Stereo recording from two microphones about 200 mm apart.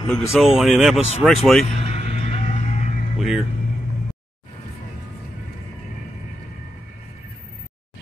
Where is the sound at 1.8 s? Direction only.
30° left (ahead or behind).